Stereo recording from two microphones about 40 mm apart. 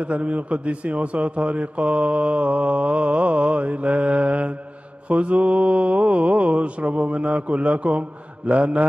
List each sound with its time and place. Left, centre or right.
0.0 s a man's voice: right